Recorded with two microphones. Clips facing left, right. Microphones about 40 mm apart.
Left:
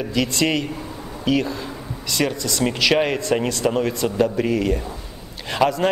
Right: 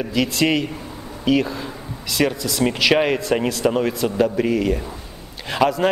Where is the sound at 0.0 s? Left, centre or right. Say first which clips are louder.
Right 1 dB; centre.